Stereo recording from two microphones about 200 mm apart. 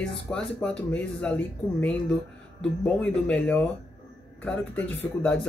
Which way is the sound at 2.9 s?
5° left (ahead or behind).